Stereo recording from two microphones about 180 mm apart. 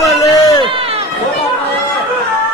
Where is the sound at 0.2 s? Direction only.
20° left (ahead or behind).